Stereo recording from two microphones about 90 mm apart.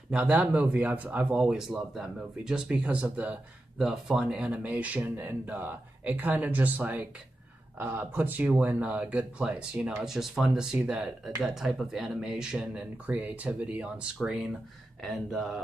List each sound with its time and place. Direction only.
0.1 s speech: 10° right (ahead or behind)